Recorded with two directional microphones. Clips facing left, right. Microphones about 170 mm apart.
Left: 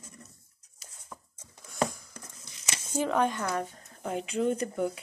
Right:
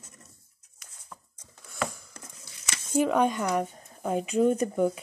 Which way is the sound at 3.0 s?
15° right (ahead or behind).